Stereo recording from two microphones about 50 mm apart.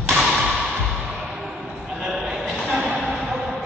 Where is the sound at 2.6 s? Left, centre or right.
Centre.